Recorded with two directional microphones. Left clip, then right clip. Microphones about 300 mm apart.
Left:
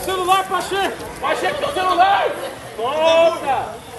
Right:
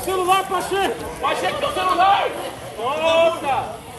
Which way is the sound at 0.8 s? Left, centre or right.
Left.